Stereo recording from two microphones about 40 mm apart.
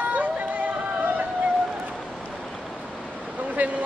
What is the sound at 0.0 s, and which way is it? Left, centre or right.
Music, right.